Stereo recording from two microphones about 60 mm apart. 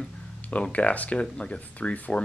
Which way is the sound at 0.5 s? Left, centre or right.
Left.